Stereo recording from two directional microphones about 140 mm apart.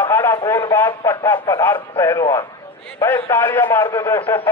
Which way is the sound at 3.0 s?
15° left (ahead or behind).